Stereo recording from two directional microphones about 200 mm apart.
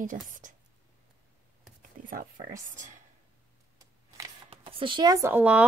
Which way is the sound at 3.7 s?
15° right (ahead or behind).